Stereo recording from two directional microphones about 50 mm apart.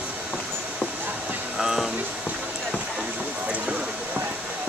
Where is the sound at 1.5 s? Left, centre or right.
Centre.